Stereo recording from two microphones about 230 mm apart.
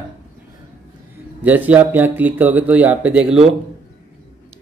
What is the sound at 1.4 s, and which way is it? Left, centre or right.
Speech, centre.